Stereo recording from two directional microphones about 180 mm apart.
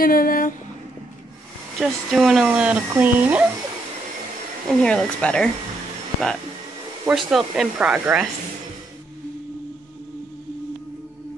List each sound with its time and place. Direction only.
0.0 s speech: 55° left (ahead or behind)
1.8 s speech: centre (ahead or behind)
4.8 s speech: 5° left (ahead or behind)
7.1 s speech: 5° right (ahead or behind)